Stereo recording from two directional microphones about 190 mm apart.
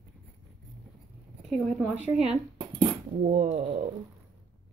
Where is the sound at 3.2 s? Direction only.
40° right (ahead or behind).